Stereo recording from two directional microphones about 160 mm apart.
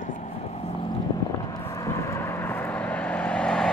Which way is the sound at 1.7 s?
20° left (ahead or behind).